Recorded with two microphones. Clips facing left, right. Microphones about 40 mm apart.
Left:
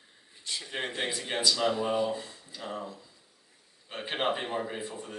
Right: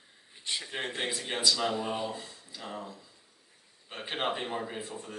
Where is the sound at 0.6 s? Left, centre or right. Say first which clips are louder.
Left 3 dB; centre.